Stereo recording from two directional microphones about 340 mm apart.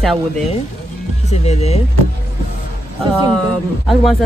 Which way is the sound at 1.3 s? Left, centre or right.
Centre.